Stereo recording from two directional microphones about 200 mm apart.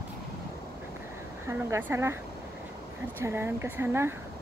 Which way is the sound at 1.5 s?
10° right (ahead or behind).